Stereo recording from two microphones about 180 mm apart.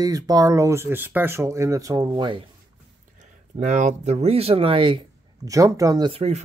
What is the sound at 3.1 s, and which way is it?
Speech, 40° right (ahead or behind).